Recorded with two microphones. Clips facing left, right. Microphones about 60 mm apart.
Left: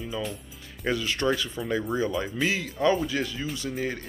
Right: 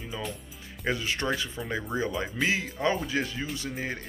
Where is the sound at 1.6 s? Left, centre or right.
Centre.